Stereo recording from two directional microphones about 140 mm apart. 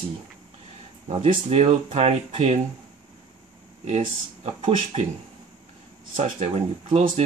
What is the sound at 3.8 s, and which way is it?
Speech, 50° right (ahead or behind).